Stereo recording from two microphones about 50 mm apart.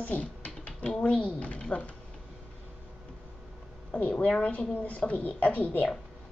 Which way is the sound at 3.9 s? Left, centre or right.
Left.